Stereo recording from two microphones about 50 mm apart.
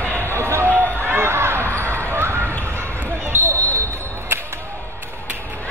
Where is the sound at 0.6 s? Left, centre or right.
Right.